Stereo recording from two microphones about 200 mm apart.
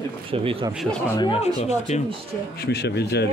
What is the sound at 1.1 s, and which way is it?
Speech, 25° left (ahead or behind).